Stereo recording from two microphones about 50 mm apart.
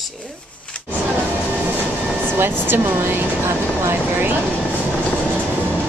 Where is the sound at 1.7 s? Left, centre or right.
Right.